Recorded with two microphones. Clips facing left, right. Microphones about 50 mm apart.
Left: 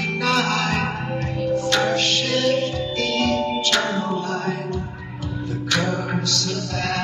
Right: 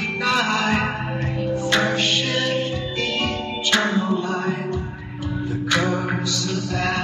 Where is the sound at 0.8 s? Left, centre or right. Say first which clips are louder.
Even; centre.